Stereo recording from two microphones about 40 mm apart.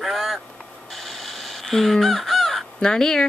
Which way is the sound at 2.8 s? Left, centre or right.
Centre.